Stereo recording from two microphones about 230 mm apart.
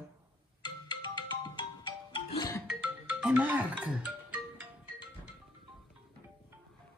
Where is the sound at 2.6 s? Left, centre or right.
Centre.